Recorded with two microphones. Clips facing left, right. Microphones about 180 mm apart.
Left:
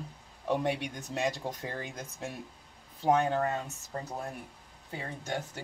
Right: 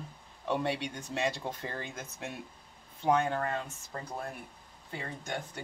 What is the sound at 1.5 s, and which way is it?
Speech, 15° left (ahead or behind).